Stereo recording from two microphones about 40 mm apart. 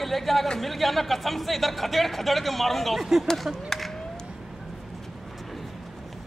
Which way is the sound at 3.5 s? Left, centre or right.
Centre.